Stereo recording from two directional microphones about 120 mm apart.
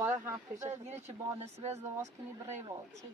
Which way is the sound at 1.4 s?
65° right (ahead or behind).